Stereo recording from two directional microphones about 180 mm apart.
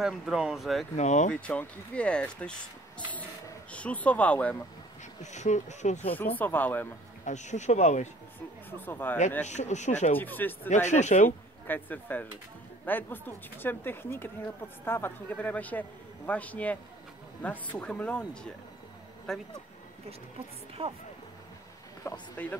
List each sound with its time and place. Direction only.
0.0 s speech: centre (ahead or behind)
0.9 s speech: 40° left (ahead or behind)
1.3 s speech: 5° left (ahead or behind)
5.2 s speech: 40° left (ahead or behind)
6.1 s speech: 10° left (ahead or behind)
7.2 s speech: 40° left (ahead or behind)
8.6 s speech: 10° left (ahead or behind)
9.4 s speech: 40° left (ahead or behind)
10.1 s speech: 10° left (ahead or behind)
10.7 s speech: 40° left (ahead or behind)
11.2 s speech: 10° left (ahead or behind)
20.1 s a woman's voice: 35° right (ahead or behind)
22.0 s speech: 15° left (ahead or behind)